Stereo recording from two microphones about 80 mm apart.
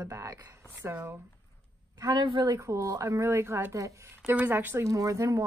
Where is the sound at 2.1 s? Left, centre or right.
Right.